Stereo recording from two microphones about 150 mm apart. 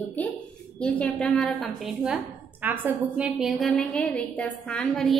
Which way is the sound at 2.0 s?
10° right (ahead or behind).